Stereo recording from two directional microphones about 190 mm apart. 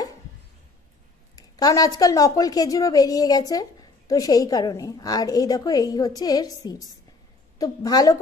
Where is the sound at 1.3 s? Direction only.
20° left (ahead or behind).